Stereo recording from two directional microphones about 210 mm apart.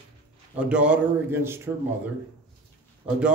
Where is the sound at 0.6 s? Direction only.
5° right (ahead or behind).